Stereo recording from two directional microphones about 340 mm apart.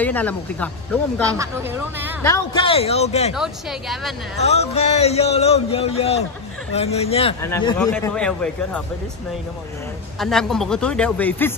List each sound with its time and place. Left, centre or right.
0.0 s a man's voice: centre
1.2 s speech: centre
2.2 s speech: centre
4.4 s speech: centre
10.1 s a man's voice: centre